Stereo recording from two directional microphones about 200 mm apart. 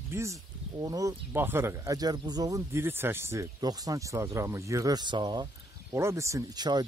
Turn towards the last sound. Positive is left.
turn(degrees=-20)  # may be behind; listen again after turning